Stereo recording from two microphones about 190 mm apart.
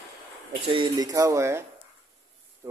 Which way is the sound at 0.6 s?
25° right (ahead or behind).